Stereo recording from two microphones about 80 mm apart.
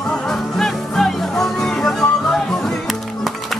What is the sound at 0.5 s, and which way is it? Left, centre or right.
Music, centre.